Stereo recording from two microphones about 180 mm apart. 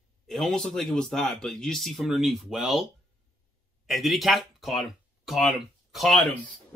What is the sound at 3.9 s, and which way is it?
Speech, centre (ahead or behind).